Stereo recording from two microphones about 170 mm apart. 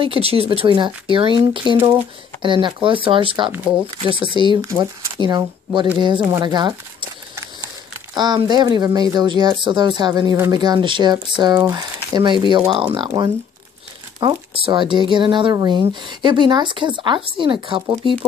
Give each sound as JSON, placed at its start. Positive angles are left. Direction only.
{"t": 0.0, "sound": "speech", "side_deg": -35}
{"t": 5.9, "sound": "a sound", "side_deg": -25}
{"t": 9.1, "sound": "speech", "side_deg": -25}